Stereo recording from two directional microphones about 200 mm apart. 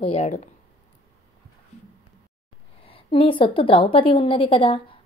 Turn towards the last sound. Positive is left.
turn(degrees=25)  # may be behind; listen again after turning